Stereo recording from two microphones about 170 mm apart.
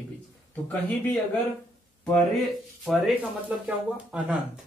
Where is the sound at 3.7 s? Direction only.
10° right (ahead or behind).